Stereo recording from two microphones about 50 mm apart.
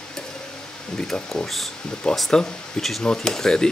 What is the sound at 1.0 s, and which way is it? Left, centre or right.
Speech, centre.